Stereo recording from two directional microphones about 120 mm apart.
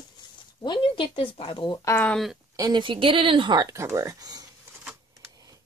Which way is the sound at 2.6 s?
40° right (ahead or behind).